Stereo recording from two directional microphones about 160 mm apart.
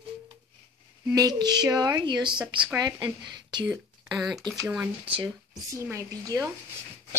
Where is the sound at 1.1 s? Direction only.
25° right (ahead or behind).